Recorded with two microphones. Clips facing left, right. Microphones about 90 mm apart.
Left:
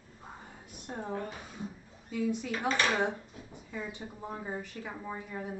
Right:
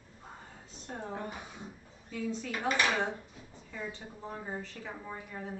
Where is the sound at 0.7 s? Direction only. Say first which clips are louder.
Left 2 dB; 15° left (ahead or behind).